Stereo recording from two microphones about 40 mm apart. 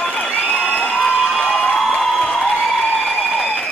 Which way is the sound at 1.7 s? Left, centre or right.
Centre.